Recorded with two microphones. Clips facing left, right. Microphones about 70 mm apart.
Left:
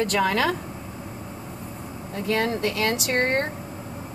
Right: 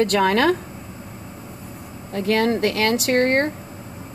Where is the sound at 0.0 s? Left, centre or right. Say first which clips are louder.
Right 5 dB; right.